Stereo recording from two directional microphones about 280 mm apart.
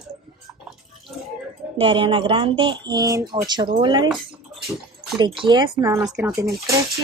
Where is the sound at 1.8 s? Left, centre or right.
Centre.